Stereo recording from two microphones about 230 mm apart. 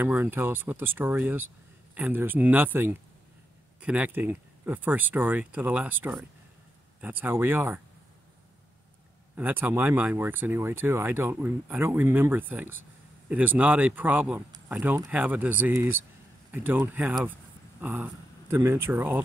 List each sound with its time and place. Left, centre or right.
0.0 s speech: centre
9.4 s speech: centre